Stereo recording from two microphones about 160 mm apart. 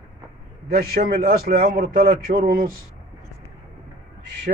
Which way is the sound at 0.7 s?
70° right (ahead or behind).